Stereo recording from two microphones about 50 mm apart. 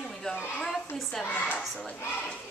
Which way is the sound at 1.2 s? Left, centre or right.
Left.